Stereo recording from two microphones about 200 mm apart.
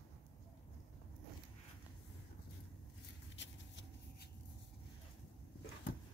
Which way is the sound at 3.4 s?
65° left (ahead or behind).